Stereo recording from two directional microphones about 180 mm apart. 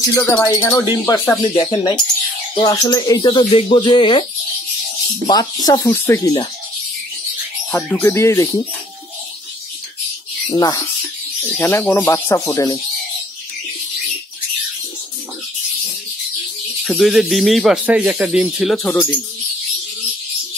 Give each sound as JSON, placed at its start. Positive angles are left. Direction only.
{"t": 0.1, "sound": "speech", "side_deg": 10}
{"t": 7.7, "sound": "speech", "side_deg": 15}
{"t": 10.5, "sound": "speech", "side_deg": 20}
{"t": 16.8, "sound": "speech", "side_deg": 0}